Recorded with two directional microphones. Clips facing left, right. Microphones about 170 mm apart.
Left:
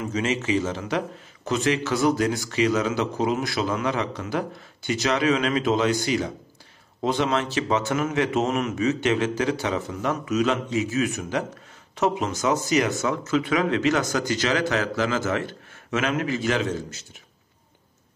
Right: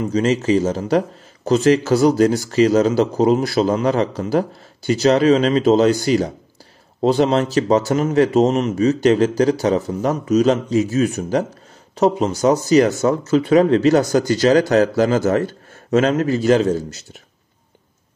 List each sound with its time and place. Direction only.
0.0 s speech: 35° right (ahead or behind)